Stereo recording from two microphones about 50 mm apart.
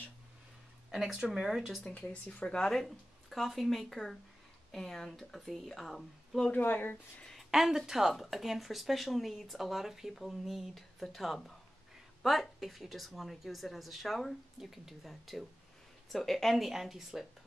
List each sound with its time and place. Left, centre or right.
1.3 s a woman's voice: centre
2.0 s speech: left
2.5 s a woman's voice: centre
6.6 s speech: left
7.3 s a woman's voice: centre